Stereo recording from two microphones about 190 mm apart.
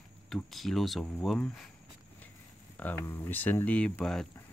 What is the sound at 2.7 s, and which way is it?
Speech, 10° left (ahead or behind).